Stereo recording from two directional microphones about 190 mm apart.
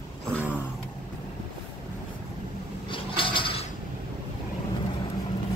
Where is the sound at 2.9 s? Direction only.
25° left (ahead or behind).